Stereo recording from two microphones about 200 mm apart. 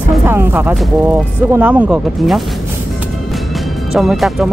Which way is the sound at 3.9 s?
Centre (ahead or behind).